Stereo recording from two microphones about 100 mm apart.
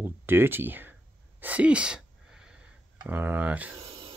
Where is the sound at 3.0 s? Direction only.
15° right (ahead or behind).